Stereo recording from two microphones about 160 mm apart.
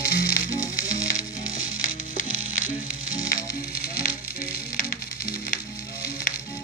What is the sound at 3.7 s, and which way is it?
Music, 70° left (ahead or behind).